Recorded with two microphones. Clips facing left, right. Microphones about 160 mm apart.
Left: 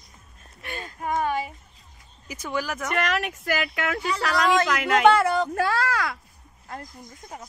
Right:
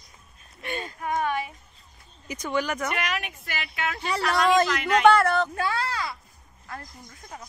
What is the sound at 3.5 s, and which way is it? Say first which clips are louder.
Speech: left 5 dB; 65° left (ahead or behind).